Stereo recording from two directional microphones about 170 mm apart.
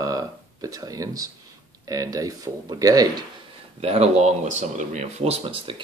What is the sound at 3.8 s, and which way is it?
Speech, 40° right (ahead or behind).